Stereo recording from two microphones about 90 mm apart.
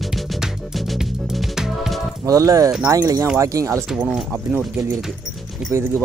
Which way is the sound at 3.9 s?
10° right (ahead or behind).